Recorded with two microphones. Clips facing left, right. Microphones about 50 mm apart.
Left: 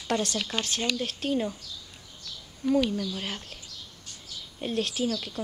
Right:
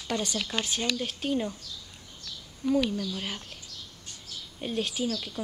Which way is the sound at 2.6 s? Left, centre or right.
Centre.